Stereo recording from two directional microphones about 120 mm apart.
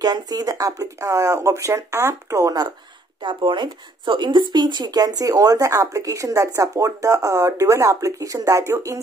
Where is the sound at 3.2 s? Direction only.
40° right (ahead or behind).